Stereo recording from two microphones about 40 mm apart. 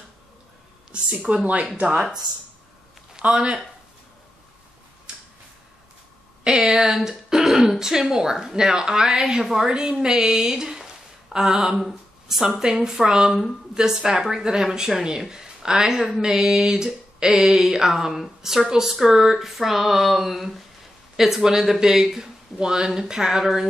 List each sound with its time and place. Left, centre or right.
1.2 s speech: right
3.2 s speech: right
5.1 s finger snapping: right
6.4 s speech: centre